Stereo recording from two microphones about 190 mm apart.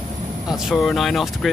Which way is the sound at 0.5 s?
Centre (ahead or behind).